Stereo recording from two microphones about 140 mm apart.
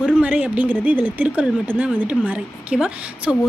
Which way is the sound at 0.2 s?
10° right (ahead or behind).